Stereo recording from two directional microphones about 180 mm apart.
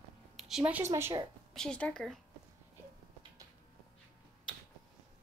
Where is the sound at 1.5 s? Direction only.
5° left (ahead or behind).